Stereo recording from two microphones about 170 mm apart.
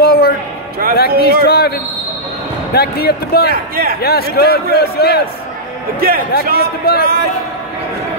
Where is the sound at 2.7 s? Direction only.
65° left (ahead or behind).